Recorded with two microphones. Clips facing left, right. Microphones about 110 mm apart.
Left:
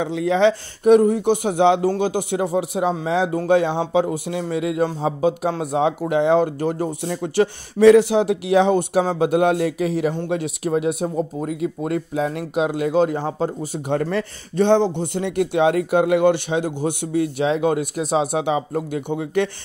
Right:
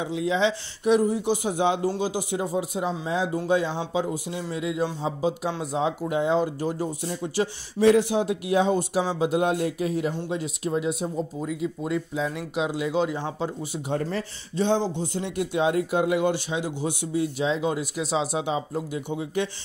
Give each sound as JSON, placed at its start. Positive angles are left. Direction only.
{"t": 0.0, "sound": "speech", "side_deg": 60}
{"t": 10.1, "sound": "speech", "side_deg": 60}
{"t": 13.9, "sound": "speech", "side_deg": 70}